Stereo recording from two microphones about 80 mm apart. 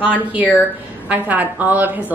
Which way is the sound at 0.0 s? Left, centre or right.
Centre.